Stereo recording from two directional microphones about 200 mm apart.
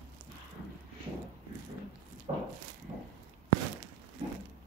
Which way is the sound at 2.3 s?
30° right (ahead or behind).